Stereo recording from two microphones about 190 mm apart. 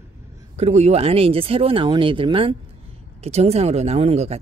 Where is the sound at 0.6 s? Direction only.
35° right (ahead or behind).